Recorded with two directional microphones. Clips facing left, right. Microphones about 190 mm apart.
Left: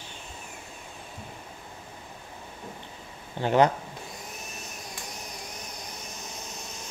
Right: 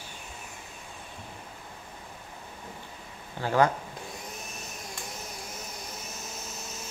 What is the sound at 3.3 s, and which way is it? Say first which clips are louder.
Speech: left 3 dB; 20° left (ahead or behind).